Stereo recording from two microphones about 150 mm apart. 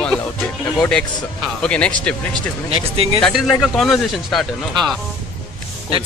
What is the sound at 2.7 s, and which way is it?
Speech, 40° right (ahead or behind).